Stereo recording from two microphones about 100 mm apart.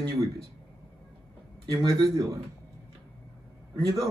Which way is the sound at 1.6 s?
35° right (ahead or behind).